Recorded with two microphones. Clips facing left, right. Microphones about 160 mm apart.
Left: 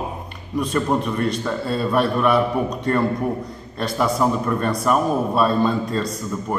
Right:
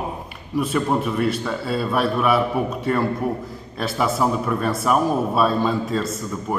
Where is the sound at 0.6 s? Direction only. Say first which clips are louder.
Even; 5° right (ahead or behind).